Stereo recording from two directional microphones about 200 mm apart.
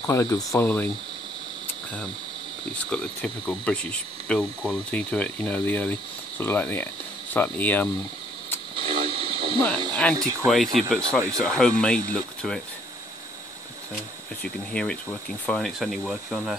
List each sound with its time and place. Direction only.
0.0 s speech: 15° left (ahead or behind)
0.6 s speech: 5° left (ahead or behind)
2.7 s speech: 5° left (ahead or behind)
8.7 s vehicle: 25° right (ahead or behind)
9.7 s speech: 25° right (ahead or behind)
10.4 s speech: centre (ahead or behind)
14.4 s speech: 5° left (ahead or behind)